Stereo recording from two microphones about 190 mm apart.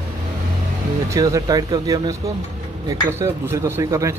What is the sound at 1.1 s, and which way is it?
Speech, 15° right (ahead or behind).